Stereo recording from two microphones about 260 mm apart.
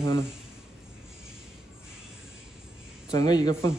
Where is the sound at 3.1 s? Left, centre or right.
Centre.